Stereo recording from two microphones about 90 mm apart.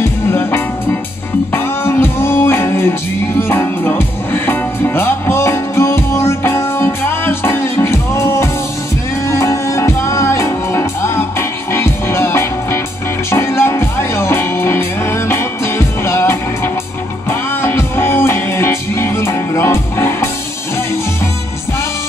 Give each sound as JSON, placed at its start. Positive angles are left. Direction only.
{"t": 0.0, "sound": "music", "side_deg": 25}